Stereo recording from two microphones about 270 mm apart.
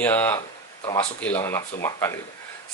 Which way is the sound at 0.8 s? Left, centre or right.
Centre.